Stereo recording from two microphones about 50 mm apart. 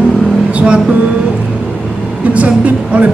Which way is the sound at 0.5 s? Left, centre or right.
Right.